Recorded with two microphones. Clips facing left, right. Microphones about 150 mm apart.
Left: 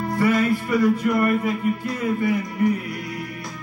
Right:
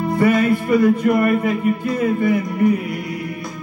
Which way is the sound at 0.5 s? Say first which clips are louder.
Right 4 dB; 55° right (ahead or behind).